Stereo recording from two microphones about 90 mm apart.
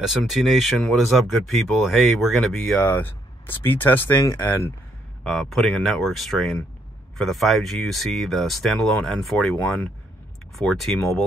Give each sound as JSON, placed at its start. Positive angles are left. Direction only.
{"t": 0.0, "sound": "speech", "side_deg": -5}
{"t": 2.8, "sound": "speech", "side_deg": 20}
{"t": 5.2, "sound": "speech", "side_deg": 5}